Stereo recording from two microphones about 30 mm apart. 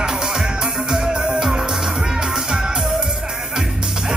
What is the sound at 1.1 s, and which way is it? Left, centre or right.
Music, right.